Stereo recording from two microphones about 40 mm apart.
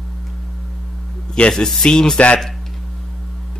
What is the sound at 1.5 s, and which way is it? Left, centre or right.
Speech, centre.